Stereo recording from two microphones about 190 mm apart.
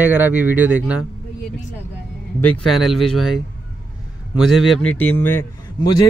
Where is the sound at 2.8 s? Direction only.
Centre (ahead or behind).